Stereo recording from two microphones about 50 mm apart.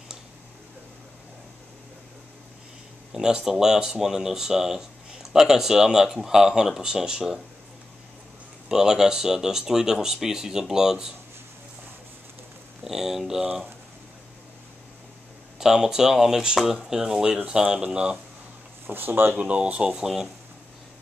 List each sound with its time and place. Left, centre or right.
3.1 s speech: centre
8.6 s speech: centre
12.8 s speech: centre
15.6 s speech: centre
18.9 s speech: right
19.3 s speech: right
20.0 s speech: centre